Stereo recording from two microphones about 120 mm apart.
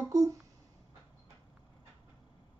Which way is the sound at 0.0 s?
25° right (ahead or behind).